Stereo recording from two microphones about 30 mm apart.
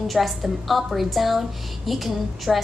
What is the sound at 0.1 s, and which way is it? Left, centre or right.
A woman's voice, centre.